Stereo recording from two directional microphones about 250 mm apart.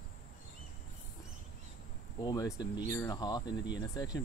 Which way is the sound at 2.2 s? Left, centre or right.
Centre.